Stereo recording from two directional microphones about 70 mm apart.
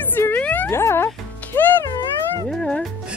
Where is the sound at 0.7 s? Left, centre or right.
Left.